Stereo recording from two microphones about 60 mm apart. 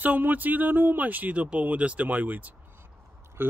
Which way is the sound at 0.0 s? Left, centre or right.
Right.